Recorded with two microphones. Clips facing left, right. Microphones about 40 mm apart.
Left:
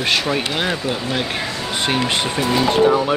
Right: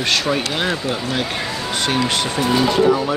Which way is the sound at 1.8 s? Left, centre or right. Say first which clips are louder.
Even; left.